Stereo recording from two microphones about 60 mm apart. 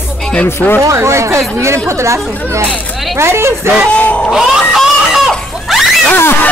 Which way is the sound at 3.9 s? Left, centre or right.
Left.